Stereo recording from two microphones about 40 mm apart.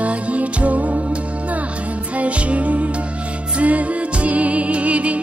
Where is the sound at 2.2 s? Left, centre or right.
Right.